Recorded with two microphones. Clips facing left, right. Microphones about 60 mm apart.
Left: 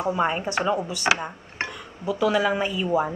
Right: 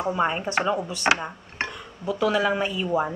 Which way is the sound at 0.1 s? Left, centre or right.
Centre.